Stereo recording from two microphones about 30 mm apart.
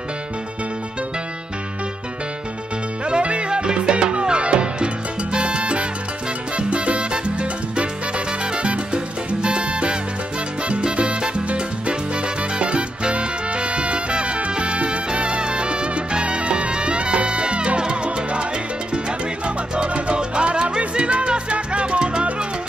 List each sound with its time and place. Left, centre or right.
3.1 s music: right
6.5 s salsa music: right
10.7 s music: right
12.5 s salsa music: right
19.0 s music: right